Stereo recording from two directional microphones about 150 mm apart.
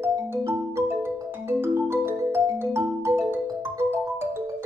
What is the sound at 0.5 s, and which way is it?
Music, 15° right (ahead or behind).